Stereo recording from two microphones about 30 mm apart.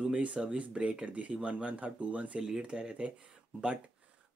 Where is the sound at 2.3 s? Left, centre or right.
Right.